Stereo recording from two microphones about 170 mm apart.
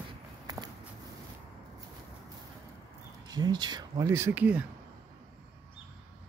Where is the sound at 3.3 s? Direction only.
25° right (ahead or behind); by 4.6 s 10° right (ahead or behind).